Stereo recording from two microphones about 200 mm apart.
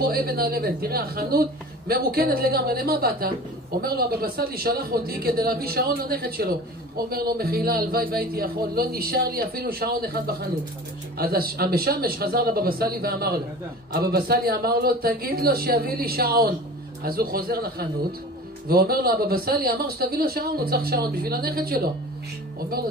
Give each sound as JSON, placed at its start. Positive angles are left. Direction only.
{"t": 0.0, "sound": "speech", "side_deg": -50}